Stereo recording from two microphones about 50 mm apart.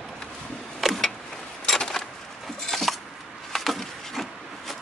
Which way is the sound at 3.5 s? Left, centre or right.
Centre.